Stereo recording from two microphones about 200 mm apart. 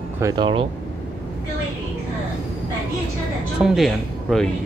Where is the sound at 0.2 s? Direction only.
25° right (ahead or behind).